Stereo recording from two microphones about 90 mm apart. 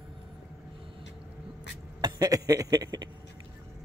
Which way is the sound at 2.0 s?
45° right (ahead or behind).